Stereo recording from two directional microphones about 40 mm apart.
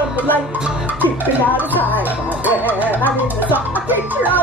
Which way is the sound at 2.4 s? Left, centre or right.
Right.